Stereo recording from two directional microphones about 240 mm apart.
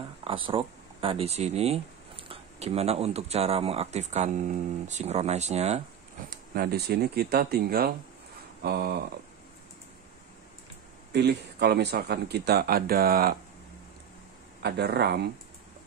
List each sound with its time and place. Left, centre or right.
0.2 s speech: right
6.3 s speech: right
11.1 s speech: right
14.6 s speech: right